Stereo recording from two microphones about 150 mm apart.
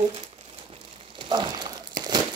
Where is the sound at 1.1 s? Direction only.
30° right (ahead or behind).